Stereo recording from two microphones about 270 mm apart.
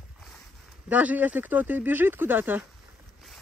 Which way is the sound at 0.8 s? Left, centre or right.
Centre.